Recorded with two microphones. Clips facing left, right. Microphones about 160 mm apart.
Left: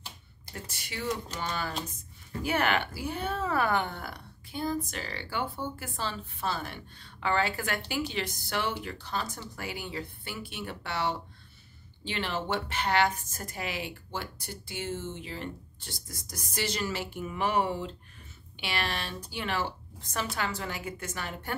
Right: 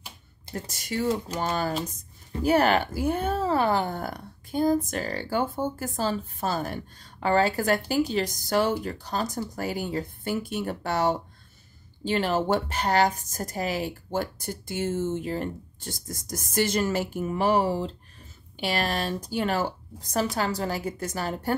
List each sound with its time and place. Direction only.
0.5 s a woman's voice: 40° right (ahead or behind)